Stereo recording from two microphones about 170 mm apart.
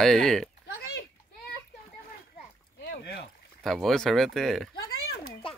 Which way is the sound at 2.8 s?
70° left (ahead or behind).